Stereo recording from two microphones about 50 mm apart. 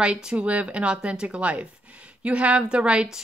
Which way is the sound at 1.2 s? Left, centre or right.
Right.